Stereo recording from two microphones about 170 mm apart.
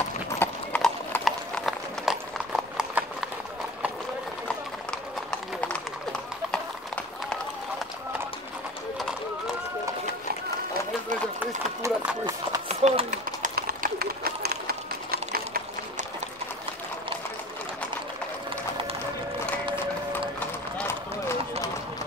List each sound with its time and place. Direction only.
0.4 s clip-clop: 10° left (ahead or behind); by 3.1 s 5° right (ahead or behind)
11.3 s clip-clop: 10° right (ahead or behind)
12.6 s a sound: 40° right (ahead or behind)
13.6 s run: 60° right (ahead or behind)
19.8 s run: 10° left (ahead or behind)